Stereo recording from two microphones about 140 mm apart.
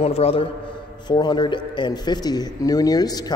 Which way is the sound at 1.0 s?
30° left (ahead or behind).